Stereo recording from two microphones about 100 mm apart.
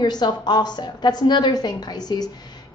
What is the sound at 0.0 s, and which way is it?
A woman's voice, 45° left (ahead or behind).